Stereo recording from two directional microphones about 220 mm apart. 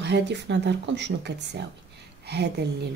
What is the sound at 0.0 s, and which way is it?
A woman's voice, 50° right (ahead or behind).